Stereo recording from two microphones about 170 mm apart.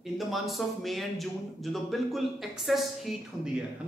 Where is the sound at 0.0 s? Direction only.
Centre (ahead or behind).